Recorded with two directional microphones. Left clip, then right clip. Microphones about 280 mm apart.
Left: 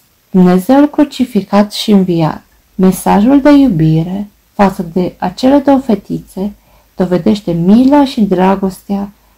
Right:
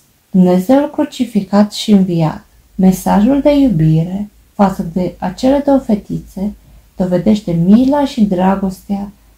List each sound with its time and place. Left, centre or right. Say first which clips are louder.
0.7 s speech: left 4 dB; left